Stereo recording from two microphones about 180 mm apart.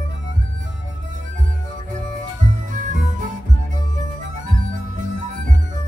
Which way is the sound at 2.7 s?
45° right (ahead or behind).